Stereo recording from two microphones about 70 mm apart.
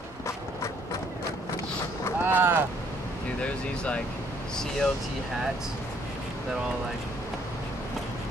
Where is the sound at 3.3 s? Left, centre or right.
Centre.